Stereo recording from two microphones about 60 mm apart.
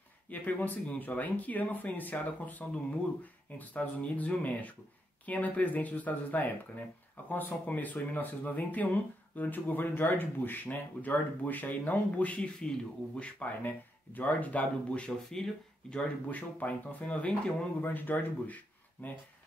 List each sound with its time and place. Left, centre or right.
0.3 s speech: left
15.2 s speech: centre
16.3 s speech: left